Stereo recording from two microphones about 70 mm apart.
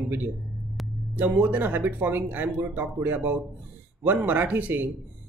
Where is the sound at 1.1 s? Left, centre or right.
Right.